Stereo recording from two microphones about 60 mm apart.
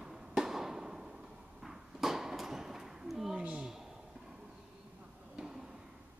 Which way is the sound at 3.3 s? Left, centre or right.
Centre.